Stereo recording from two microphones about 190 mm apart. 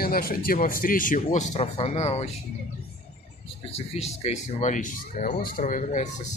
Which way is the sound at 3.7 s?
35° left (ahead or behind).